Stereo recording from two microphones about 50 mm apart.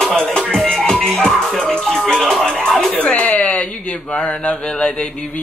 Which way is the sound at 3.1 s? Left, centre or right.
Left.